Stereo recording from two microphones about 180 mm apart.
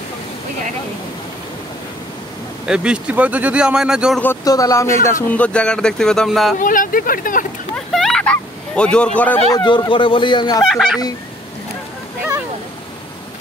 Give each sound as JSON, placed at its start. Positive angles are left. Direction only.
{"t": 2.6, "sound": "speech", "side_deg": -5}
{"t": 4.2, "sound": "speech", "side_deg": 15}
{"t": 6.6, "sound": "speech", "side_deg": 50}
{"t": 7.7, "sound": "vehicle", "side_deg": 0}
{"t": 9.5, "sound": "speech", "side_deg": 20}
{"t": 10.6, "sound": "speech", "side_deg": 0}